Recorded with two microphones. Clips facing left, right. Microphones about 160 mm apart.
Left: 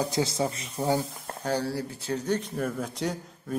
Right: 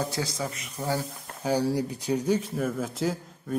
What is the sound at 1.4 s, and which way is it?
Speech, 10° right (ahead or behind).